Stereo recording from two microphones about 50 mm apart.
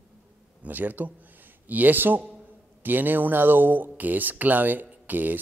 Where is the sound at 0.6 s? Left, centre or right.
Right.